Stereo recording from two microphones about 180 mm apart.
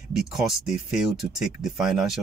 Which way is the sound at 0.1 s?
5° right (ahead or behind).